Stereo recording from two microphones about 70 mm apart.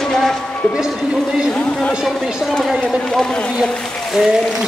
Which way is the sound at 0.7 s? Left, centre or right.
Centre.